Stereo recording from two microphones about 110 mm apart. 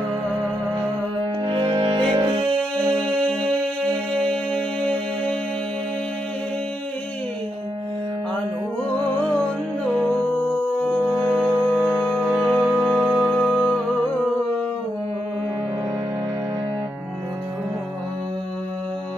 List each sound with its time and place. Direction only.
1.4 s music: 50° right (ahead or behind)
4.5 s music: 10° left (ahead or behind)
11.3 s music: 10° right (ahead or behind)